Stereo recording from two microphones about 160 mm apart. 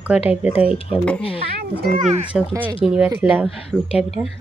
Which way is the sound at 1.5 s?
75° right (ahead or behind).